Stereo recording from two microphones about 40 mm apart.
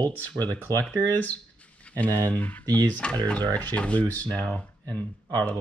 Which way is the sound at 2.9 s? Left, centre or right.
Left.